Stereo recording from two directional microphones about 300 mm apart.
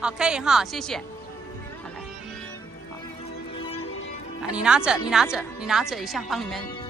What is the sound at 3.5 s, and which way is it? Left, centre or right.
Music, centre.